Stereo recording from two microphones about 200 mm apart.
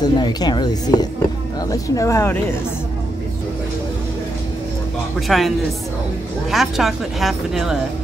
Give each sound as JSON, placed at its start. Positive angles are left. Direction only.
{"t": 0.0, "sound": "speech", "side_deg": 20}
{"t": 5.3, "sound": "a woman's voice", "side_deg": 0}
{"t": 6.5, "sound": "a woman's voice", "side_deg": 0}